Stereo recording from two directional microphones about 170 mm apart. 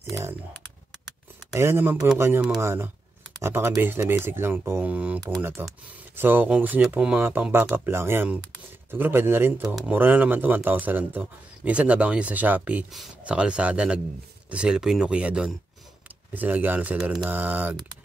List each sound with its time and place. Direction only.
0.1 s speech: 15° right (ahead or behind)
1.5 s speech: 15° right (ahead or behind)